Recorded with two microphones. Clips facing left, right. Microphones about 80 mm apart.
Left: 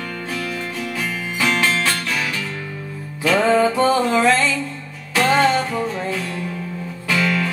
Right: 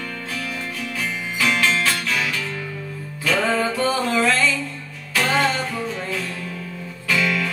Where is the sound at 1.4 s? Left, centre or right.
Centre.